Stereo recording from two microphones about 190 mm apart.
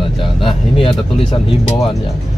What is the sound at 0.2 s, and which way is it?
Speech, 25° left (ahead or behind).